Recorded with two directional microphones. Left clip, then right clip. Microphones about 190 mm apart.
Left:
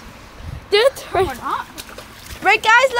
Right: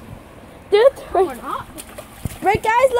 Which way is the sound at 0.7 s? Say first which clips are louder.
Right 2 dB; 35° left (ahead or behind).